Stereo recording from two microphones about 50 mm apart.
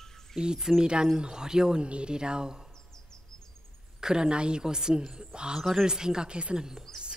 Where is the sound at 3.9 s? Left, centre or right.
Centre.